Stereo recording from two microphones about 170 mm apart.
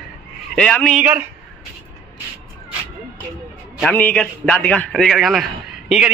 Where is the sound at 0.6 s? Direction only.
5° left (ahead or behind).